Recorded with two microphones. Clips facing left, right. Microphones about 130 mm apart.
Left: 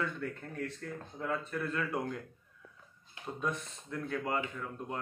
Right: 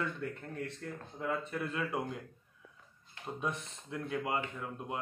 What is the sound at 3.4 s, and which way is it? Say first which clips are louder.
A man's voice: left 2 dB; 20° right (ahead or behind).